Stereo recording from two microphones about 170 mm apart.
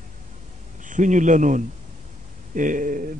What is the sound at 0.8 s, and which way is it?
A man's voice, 50° right (ahead or behind).